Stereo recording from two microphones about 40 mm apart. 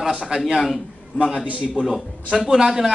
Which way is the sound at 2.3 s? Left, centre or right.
Centre.